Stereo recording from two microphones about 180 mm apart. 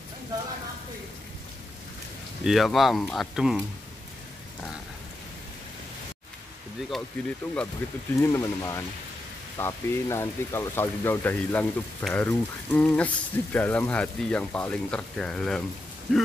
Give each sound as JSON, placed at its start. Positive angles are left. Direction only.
{"t": 2.4, "sound": "speech", "side_deg": 0}
{"t": 6.9, "sound": "speech", "side_deg": 5}
{"t": 8.2, "sound": "speech", "side_deg": 15}